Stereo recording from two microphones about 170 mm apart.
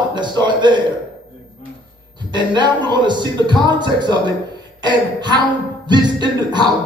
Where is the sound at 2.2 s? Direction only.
25° right (ahead or behind).